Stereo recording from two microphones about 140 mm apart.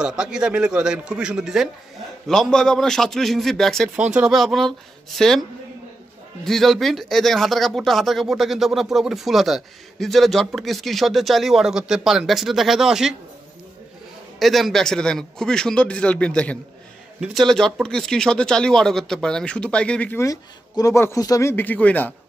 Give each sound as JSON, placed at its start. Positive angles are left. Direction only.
{"t": 0.0, "sound": "speech", "side_deg": -5}
{"t": 3.9, "sound": "speech", "side_deg": -10}
{"t": 6.4, "sound": "speech", "side_deg": 0}
{"t": 14.4, "sound": "speech", "side_deg": 0}
{"t": 20.2, "sound": "speech", "side_deg": 25}